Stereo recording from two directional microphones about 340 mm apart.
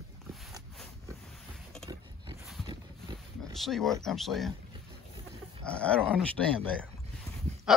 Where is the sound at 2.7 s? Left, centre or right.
Centre.